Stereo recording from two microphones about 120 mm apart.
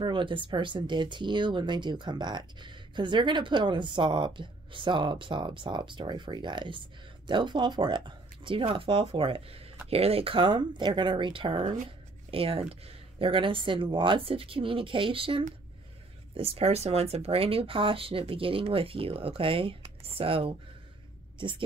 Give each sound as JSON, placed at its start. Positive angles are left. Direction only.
{"t": 0.0, "sound": "speech", "side_deg": -45}
{"t": 16.3, "sound": "a woman's voice", "side_deg": -60}